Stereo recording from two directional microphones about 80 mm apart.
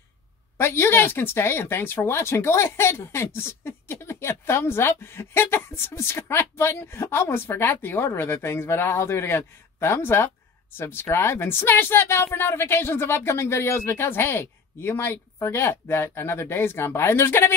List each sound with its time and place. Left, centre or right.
0.6 s speech: left